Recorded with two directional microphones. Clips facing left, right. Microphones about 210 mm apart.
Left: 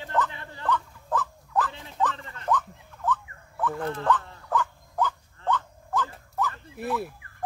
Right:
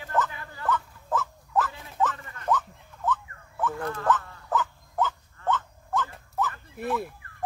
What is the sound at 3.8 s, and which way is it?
Speech, 30° left (ahead or behind).